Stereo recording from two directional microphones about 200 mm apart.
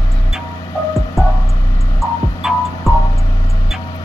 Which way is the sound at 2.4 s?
5° right (ahead or behind).